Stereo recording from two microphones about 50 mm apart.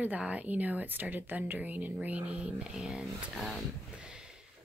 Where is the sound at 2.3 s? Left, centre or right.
Centre.